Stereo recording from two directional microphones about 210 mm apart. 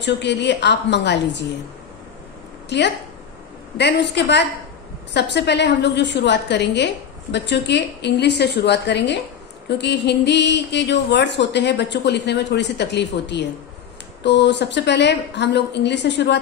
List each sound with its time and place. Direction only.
0.0 s a woman's voice: 55° left (ahead or behind)
2.7 s a woman's voice: 55° left (ahead or behind)